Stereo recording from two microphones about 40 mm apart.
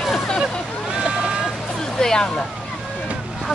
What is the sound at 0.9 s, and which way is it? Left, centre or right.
Vehicle, centre.